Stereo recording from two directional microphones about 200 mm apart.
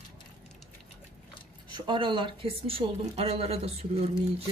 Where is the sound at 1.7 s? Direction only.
20° right (ahead or behind).